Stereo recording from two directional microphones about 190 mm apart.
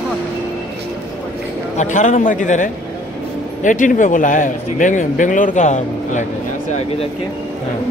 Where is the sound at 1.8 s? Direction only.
40° left (ahead or behind).